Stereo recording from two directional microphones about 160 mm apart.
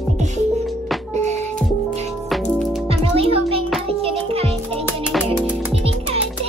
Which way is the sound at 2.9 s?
35° right (ahead or behind).